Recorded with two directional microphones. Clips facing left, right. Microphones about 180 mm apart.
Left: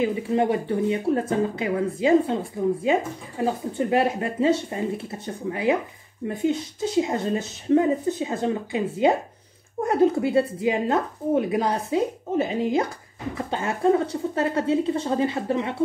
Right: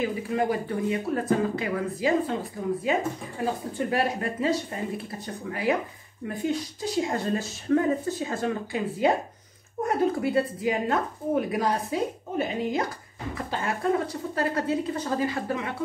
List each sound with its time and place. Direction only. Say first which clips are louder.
0.0 s a woman's voice: left 4 dB; 25° left (ahead or behind)
3.7 s a woman's voice: left 5 dB; 25° left (ahead or behind)